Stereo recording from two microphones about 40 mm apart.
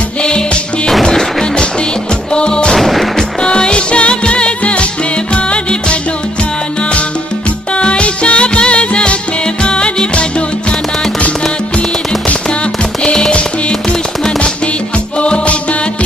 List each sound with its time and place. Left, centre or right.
1.0 s music: centre
2.7 s music: centre
3.4 s music: left
7.7 s music: left
15.1 s music: left